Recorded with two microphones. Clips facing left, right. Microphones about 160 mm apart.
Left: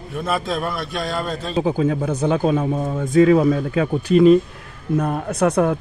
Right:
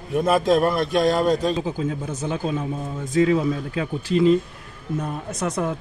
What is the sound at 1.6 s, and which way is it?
Speech, 65° left (ahead or behind).